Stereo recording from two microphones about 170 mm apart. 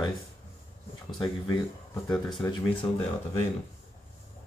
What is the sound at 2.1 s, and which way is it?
Speech, 5° left (ahead or behind).